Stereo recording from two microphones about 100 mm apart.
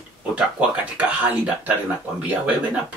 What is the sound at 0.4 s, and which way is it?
Speech, 15° right (ahead or behind).